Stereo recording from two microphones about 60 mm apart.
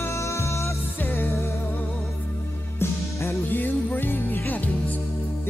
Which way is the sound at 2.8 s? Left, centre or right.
Left.